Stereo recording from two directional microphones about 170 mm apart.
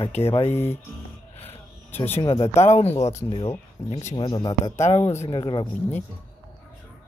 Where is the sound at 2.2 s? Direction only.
20° left (ahead or behind).